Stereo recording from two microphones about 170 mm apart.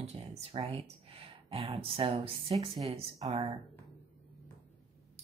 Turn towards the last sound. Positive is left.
turn(degrees=-30)  # may be behind; listen again after turning